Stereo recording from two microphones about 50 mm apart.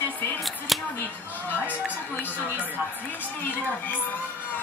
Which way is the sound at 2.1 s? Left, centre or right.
Left.